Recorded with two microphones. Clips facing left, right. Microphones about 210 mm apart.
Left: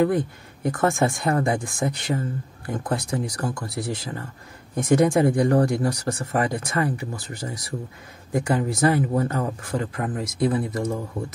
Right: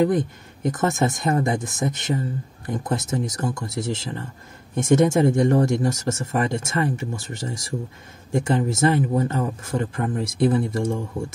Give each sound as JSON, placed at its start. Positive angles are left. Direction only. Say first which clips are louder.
{"t": 0.0, "sound": "speech", "louder": "right 1 dB", "side_deg": -20}